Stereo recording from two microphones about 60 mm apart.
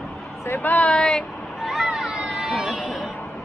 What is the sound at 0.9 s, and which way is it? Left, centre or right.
Vehicle, centre.